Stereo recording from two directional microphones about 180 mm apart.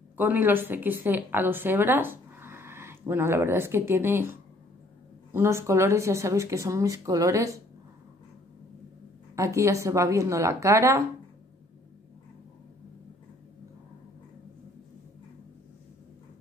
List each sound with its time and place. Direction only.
0.2 s a woman's voice: 10° right (ahead or behind)
5.3 s speech: 15° right (ahead or behind)
9.3 s speech: 15° right (ahead or behind)